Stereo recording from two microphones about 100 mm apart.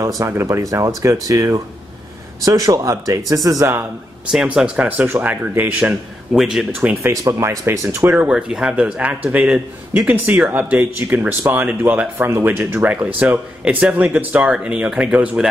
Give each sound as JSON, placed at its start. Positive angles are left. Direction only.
{"t": 0.2, "sound": "speech", "side_deg": -30}
{"t": 4.6, "sound": "speech", "side_deg": -10}
{"t": 6.3, "sound": "speech", "side_deg": -5}
{"t": 6.8, "sound": "speech", "side_deg": -20}
{"t": 8.3, "sound": "speech", "side_deg": -5}